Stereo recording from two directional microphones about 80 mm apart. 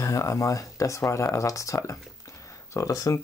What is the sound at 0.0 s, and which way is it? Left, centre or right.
Speech, left.